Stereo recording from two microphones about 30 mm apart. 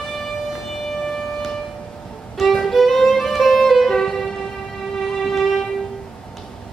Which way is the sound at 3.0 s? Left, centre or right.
Centre.